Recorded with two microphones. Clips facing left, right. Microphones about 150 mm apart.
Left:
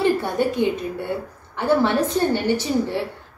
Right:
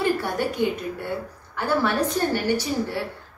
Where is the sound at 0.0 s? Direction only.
20° left (ahead or behind).